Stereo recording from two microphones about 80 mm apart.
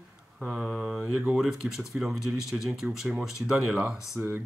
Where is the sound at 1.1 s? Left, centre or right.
Centre.